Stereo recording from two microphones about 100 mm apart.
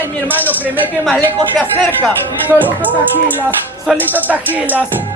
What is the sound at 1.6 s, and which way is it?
Music, 15° left (ahead or behind).